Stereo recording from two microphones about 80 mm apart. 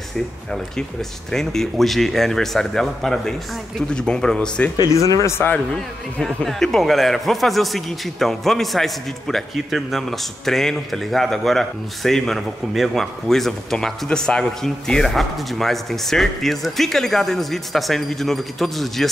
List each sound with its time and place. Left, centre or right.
1.3 s a man's voice: centre
4.7 s speech: left
5.7 s a man's voice: centre